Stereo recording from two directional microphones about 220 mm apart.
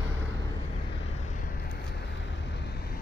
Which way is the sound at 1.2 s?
35° left (ahead or behind).